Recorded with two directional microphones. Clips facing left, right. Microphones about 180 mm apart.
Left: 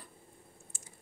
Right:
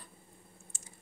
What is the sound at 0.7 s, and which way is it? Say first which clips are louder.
Typing: even; 25° right (ahead or behind).